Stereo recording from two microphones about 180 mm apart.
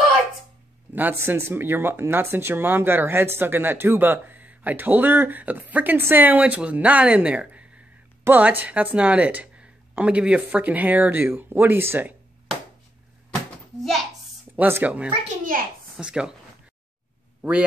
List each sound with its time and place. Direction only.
0.9 s speech: 10° right (ahead or behind)
14.5 s speech: 10° right (ahead or behind)
15.2 s a child's voice: 50° right (ahead or behind)
16.0 s speech: 5° right (ahead or behind)
17.4 s speech: 5° right (ahead or behind)